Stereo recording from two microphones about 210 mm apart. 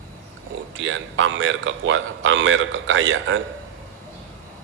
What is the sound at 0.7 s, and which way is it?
A man's voice, 65° right (ahead or behind).